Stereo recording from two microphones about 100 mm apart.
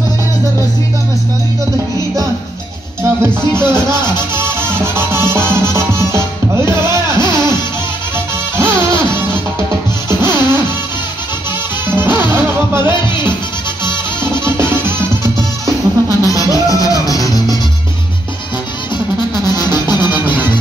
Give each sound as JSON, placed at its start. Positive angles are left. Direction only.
{"t": 3.0, "sound": "music", "side_deg": -25}
{"t": 3.7, "sound": "speech", "side_deg": -25}
{"t": 4.4, "sound": "music", "side_deg": -25}
{"t": 8.5, "sound": "music", "side_deg": -25}
{"t": 12.0, "sound": "music", "side_deg": -20}
{"t": 14.2, "sound": "music", "side_deg": -25}
{"t": 15.6, "sound": "music", "side_deg": -35}
{"t": 16.6, "sound": "music", "side_deg": 35}
{"t": 19.5, "sound": "music", "side_deg": 40}